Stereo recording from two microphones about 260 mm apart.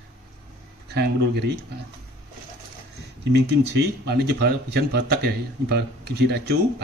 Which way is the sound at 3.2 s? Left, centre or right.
Right.